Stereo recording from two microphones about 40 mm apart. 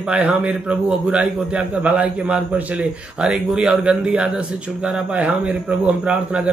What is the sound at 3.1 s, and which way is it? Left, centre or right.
Speech, centre.